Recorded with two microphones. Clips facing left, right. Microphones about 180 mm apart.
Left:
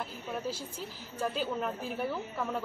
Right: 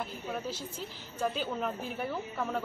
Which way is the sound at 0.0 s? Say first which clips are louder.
Even; 10° left (ahead or behind).